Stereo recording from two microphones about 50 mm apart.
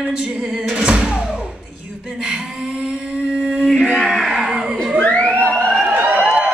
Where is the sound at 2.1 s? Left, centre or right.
Centre.